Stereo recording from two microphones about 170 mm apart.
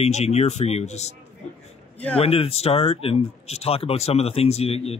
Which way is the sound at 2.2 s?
35° left (ahead or behind).